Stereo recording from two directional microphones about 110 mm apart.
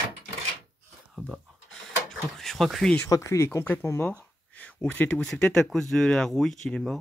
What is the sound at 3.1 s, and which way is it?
Speech, 30° left (ahead or behind).